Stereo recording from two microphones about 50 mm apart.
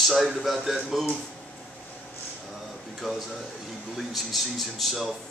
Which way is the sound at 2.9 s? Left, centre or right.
Centre.